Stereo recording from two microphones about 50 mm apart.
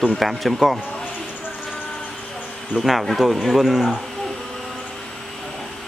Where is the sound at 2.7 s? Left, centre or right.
Centre.